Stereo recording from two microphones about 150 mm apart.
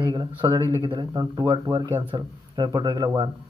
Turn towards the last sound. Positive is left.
turn(degrees=-25)  # may be behind; listen again after turning